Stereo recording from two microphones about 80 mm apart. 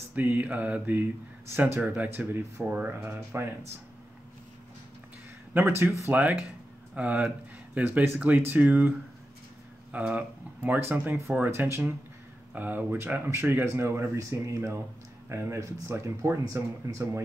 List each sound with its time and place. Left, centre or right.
0.1 s speech: right
5.5 s speech: right
6.0 s speech: centre
9.9 s speech: centre; by 17.2 s right